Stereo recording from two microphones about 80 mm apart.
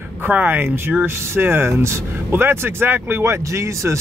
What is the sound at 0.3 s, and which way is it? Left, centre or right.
Speech, right.